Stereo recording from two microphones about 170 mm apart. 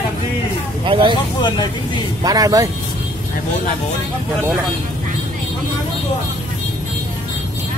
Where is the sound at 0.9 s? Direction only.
30° right (ahead or behind).